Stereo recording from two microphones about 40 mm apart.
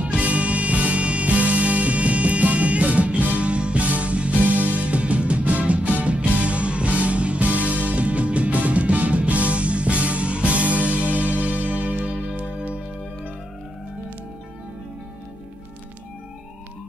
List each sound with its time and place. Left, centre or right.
0.0 s music: right